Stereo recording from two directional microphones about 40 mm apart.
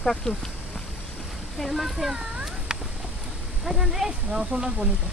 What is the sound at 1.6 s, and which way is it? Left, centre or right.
Speech, centre.